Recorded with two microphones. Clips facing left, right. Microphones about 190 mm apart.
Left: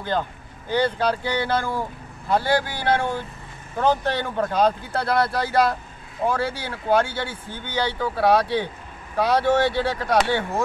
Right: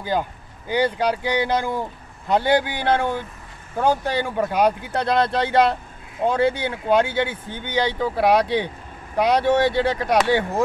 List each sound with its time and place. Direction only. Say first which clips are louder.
0.0 s speech: right 2 dB; 10° right (ahead or behind)